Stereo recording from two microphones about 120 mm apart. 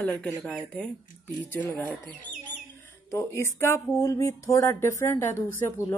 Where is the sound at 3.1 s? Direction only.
25° left (ahead or behind).